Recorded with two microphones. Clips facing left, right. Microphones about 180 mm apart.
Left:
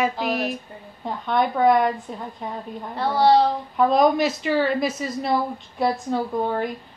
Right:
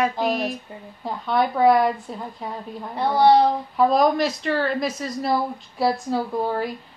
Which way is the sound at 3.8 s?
Centre (ahead or behind).